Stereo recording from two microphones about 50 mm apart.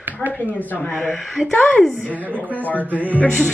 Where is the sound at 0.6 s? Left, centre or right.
Left.